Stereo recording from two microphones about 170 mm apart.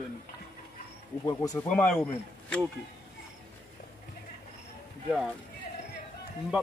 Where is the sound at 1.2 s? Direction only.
20° left (ahead or behind).